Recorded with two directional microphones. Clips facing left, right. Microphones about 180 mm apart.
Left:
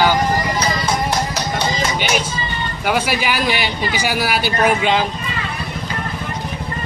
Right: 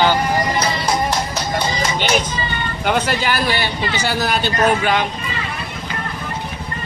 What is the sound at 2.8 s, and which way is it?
Speech, 10° left (ahead or behind).